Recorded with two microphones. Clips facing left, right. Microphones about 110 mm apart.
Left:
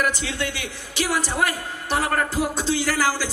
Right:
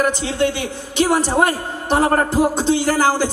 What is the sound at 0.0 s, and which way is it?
A man's voice, 30° right (ahead or behind).